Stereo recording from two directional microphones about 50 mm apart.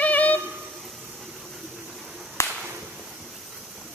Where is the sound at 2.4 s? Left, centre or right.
Left.